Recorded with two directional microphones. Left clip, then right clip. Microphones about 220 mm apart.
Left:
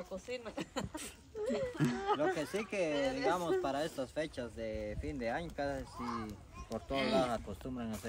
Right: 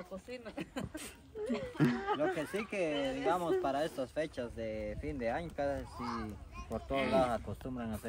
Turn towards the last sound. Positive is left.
turn(degrees=0)  # may be behind; listen again after turning